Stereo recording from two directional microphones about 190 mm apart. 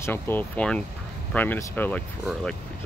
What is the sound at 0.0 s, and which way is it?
Speech, 10° left (ahead or behind).